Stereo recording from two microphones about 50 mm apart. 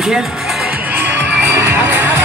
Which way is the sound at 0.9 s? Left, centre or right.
Right.